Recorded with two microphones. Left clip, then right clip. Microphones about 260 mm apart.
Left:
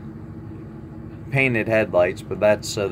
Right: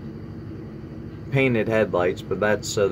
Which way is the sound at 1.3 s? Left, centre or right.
Left.